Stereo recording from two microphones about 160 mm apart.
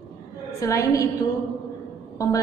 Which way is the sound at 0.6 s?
20° left (ahead or behind).